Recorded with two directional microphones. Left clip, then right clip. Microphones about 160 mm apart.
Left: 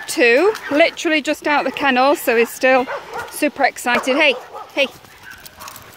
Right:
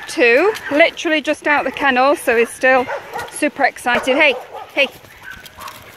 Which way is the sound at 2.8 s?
5° left (ahead or behind).